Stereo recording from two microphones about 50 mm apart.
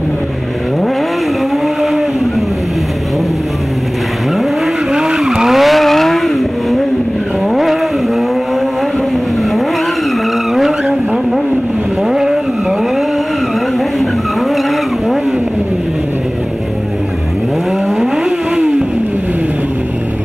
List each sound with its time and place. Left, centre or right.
4.9 s vehicle: centre
12.1 s vehicle: centre